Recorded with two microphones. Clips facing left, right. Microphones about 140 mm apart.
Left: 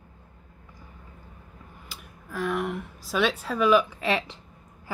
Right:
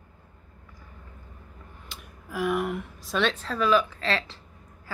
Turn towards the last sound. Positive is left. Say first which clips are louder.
# left 2 dB
turn(degrees=15)  # may be behind; listen again after turning